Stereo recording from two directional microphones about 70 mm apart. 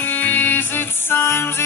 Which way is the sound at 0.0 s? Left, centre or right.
Left.